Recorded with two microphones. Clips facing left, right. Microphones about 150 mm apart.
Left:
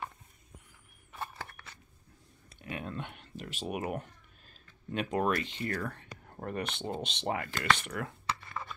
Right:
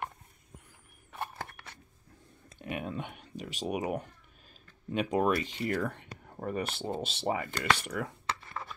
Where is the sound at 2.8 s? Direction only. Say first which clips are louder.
Right 2 dB; 10° right (ahead or behind).